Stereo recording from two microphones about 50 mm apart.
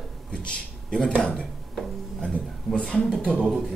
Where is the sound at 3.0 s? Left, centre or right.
Centre.